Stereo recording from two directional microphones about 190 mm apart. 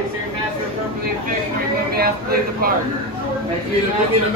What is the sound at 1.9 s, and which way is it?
Speech, 55° right (ahead or behind).